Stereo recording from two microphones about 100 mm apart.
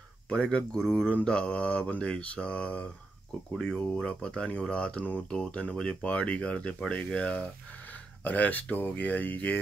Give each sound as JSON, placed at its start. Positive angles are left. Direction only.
{"t": 0.3, "sound": "speech", "side_deg": 10}